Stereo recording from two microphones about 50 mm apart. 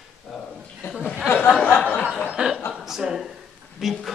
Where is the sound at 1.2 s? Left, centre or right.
Left.